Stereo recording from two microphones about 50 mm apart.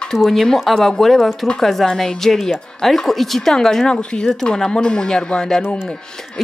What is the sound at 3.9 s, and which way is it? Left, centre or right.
Speech, centre.